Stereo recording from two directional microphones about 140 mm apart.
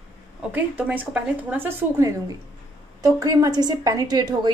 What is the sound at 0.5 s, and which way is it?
A woman's voice, 10° right (ahead or behind).